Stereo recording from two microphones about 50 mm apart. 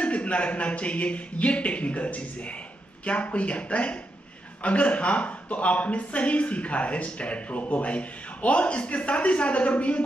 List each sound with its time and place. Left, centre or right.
0.0 s speech: left